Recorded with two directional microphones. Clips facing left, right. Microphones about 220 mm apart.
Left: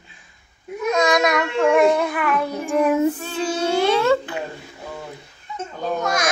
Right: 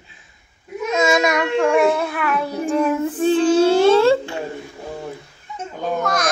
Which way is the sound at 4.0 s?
30° right (ahead or behind).